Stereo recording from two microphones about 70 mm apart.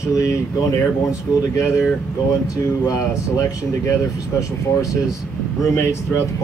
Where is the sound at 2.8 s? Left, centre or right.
Left.